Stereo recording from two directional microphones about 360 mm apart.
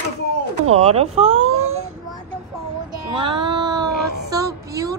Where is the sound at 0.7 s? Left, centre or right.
Centre.